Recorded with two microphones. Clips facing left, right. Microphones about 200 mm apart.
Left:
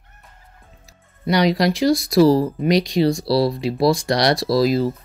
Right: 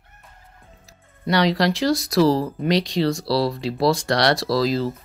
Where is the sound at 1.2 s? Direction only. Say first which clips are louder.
Left 2 dB; 15° left (ahead or behind).